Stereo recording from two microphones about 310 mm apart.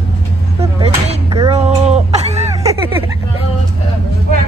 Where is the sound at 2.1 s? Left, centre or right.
Right.